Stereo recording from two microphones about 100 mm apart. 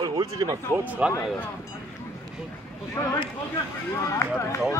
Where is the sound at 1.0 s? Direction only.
15° right (ahead or behind).